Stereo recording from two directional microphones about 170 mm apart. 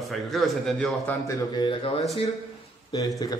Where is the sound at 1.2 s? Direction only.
25° left (ahead or behind).